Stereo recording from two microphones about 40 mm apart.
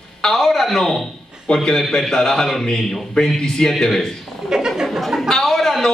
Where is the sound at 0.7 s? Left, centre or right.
Centre.